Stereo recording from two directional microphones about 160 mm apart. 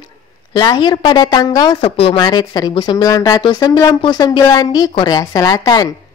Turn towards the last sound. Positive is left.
turn(degrees=20)  # may be behind; listen again after turning